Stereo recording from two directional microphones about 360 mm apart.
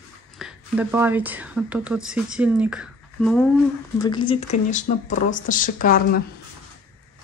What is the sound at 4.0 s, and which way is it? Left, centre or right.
Speech, centre.